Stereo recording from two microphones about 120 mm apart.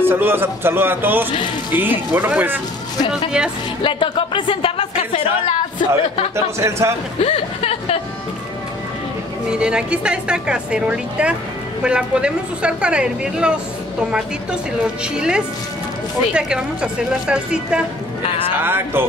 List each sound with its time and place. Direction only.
0.0 s a man's voice: 20° right (ahead or behind)
3.8 s speech: 45° left (ahead or behind)
6.3 s a man's voice: 25° right (ahead or behind)
7.2 s speech: 55° left (ahead or behind)
9.5 s speech: 10° right (ahead or behind)
15.1 s speech: 5° right (ahead or behind)
18.6 s speech: 20° right (ahead or behind)